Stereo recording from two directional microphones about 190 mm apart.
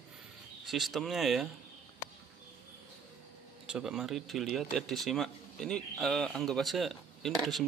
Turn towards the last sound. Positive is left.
turn(degrees=0)  # may be behind; listen again after turning